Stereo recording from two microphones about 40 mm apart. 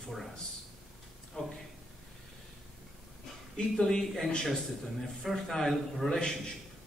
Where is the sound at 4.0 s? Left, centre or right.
Centre.